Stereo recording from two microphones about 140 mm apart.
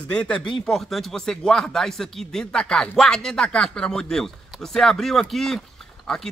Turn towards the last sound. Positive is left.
turn(degrees=5)  # may be behind; listen again after turning